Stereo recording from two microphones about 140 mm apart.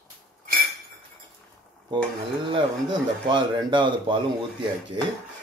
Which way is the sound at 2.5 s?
35° right (ahead or behind).